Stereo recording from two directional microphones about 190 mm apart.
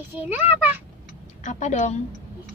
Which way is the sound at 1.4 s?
40° left (ahead or behind).